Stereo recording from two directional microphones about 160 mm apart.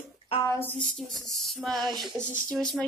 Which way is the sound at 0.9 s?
Centre (ahead or behind).